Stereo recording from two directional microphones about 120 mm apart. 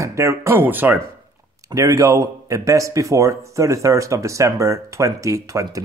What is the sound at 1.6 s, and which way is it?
Speech, 30° right (ahead or behind).